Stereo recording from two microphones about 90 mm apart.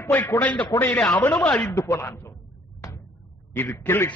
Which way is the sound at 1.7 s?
35° left (ahead or behind).